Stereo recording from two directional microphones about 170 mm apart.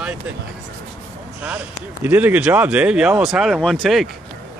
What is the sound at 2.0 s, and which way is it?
Speech, 10° right (ahead or behind).